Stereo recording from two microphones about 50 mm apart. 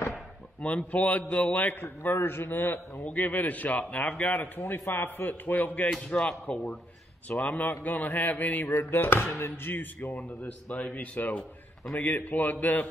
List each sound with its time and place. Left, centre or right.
0.6 s a man's voice: left
1.7 s a man's voice: left
3.0 s a man's voice: left
4.6 s a man's voice: left
6.0 s a man's voice: left
8.7 s a man's voice: left
9.9 s a man's voice: left
11.1 s a man's voice: left